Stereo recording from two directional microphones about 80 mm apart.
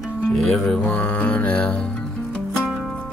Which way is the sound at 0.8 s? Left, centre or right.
Centre.